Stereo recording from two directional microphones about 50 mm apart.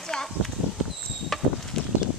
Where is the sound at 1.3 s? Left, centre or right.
Centre.